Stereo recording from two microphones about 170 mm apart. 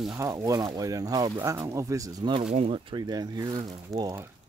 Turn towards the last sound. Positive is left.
turn(degrees=-20)  # may be behind; listen again after turning